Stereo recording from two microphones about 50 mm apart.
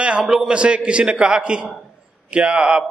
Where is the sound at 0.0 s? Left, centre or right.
Right.